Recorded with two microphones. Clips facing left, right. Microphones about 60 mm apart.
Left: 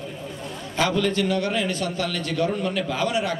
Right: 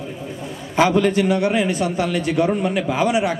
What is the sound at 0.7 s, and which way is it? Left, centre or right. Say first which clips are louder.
A man's voice: right 6 dB; right.